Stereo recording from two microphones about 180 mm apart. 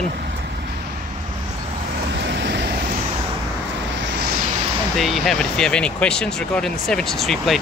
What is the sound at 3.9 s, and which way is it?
Vehicle, 80° right.